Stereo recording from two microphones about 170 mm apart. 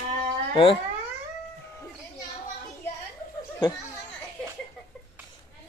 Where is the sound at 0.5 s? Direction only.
30° left (ahead or behind).